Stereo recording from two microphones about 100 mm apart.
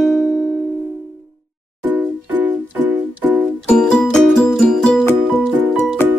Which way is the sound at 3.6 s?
5° left (ahead or behind).